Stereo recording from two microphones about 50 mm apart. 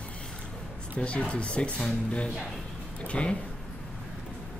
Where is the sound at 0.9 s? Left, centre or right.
Left.